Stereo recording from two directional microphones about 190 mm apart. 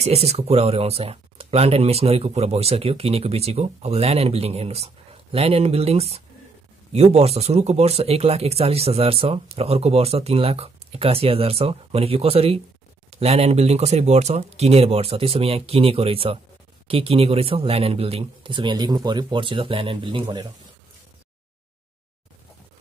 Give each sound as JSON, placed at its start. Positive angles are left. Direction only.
{"t": 0.0, "sound": "speech", "side_deg": -35}